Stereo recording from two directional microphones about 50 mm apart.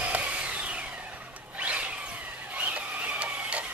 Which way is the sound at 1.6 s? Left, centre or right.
Right.